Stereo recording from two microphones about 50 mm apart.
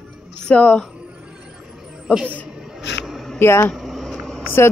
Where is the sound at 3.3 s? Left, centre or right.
Left.